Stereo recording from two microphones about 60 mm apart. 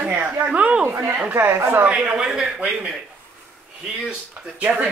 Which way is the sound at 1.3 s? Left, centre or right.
Right.